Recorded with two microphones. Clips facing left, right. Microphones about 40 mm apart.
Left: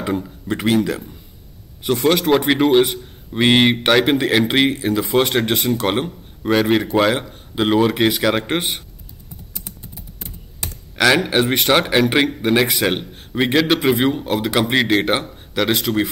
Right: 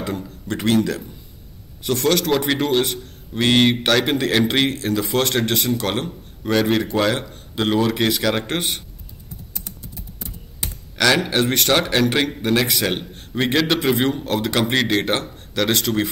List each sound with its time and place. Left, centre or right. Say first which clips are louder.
0.2 s a man's voice: left 2 dB; centre
11.0 s a man's voice: left 2 dB; centre